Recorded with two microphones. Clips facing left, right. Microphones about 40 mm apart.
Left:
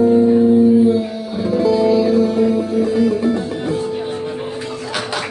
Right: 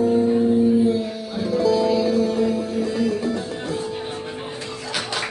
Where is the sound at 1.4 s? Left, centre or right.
Centre.